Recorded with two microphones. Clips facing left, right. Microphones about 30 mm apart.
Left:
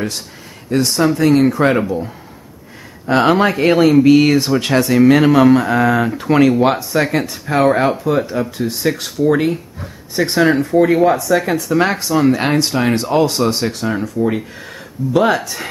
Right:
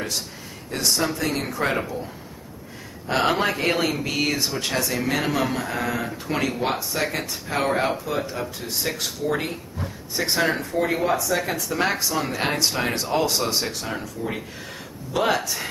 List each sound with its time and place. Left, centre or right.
0.7 s speech: centre
3.1 s speech: centre
4.6 s speech: left
6.8 s speech: centre